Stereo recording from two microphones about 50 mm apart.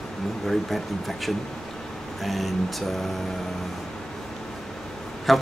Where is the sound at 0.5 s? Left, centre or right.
Centre.